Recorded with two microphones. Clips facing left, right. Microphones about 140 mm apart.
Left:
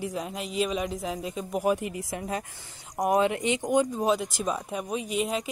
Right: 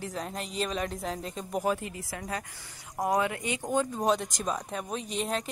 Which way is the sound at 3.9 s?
5° left (ahead or behind).